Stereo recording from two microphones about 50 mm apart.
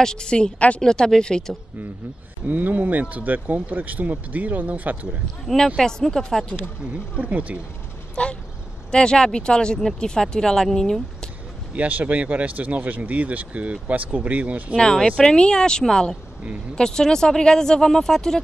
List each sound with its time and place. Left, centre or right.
0.0 s speech: centre
0.8 s speech: centre
2.4 s speech: right
5.8 s speech: centre
7.2 s speech: right
8.2 s speech: left
11.7 s speech: right
14.8 s speech: centre